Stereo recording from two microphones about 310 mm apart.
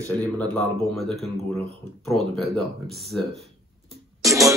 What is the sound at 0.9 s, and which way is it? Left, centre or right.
Speech, centre.